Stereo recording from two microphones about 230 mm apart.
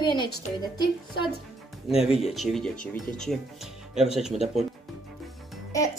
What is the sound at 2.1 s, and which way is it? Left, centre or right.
Speech, centre.